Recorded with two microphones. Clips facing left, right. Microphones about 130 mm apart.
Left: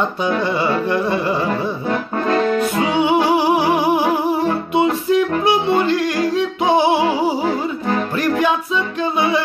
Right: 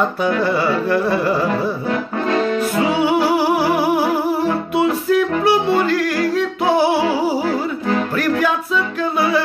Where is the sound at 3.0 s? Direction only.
20° left (ahead or behind).